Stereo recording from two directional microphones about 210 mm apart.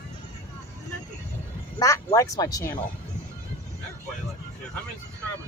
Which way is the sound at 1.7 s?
15° left (ahead or behind).